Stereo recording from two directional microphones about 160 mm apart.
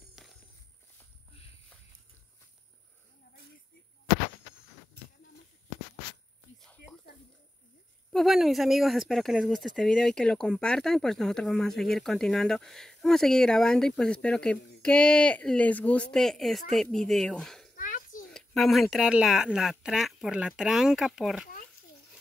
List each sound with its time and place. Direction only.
0.1 s music: centre (ahead or behind)
8.1 s speech: centre (ahead or behind)
17.7 s a sound: 55° left (ahead or behind)
18.3 s speech: centre (ahead or behind)